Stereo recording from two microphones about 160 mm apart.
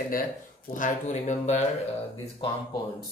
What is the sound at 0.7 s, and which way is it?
Speech, 50° left (ahead or behind).